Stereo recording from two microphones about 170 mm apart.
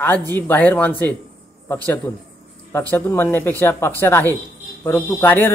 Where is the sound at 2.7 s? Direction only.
15° left (ahead or behind).